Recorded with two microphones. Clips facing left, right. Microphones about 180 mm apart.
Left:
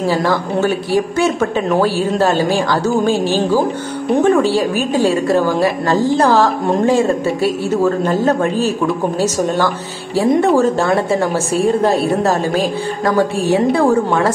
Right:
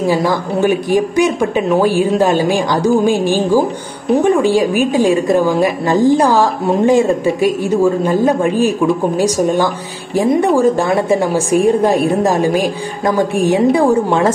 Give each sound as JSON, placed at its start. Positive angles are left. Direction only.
{"t": 0.0, "sound": "a woman's voice", "side_deg": -15}